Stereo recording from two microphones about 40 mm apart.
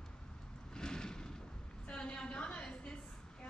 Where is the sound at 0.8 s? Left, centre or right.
Centre.